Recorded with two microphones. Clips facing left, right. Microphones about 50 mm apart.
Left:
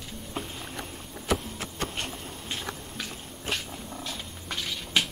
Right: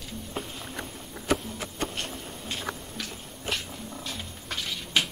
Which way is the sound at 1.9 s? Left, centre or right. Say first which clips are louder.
Even; centre.